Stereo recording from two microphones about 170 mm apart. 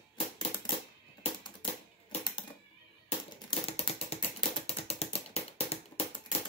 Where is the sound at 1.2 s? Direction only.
30° left (ahead or behind).